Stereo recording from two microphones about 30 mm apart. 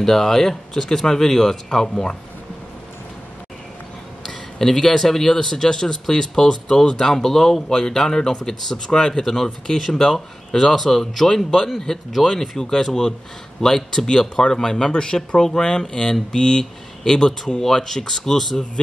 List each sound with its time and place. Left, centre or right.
0.0 s speech: centre
4.3 s speech: centre
10.5 s speech: centre
11.9 s speech: left
14.9 s speech: left
15.1 s speech: centre